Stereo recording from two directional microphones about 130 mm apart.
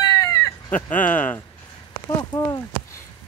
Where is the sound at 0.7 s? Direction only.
10° left (ahead or behind).